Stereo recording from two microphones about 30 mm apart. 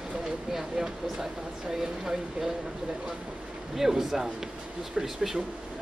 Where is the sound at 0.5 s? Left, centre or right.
Centre.